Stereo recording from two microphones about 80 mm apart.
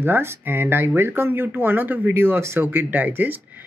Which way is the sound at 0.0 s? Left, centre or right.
Right.